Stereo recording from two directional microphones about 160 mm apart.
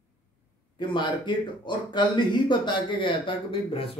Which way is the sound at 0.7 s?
30° left (ahead or behind).